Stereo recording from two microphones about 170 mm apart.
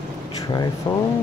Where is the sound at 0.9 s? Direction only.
25° left (ahead or behind).